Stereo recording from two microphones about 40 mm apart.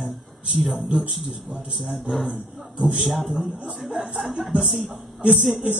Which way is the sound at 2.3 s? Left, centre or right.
Right.